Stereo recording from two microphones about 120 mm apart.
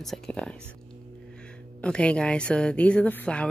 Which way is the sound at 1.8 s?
10° left (ahead or behind).